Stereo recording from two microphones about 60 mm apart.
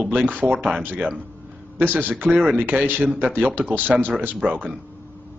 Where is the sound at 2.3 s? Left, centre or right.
Centre.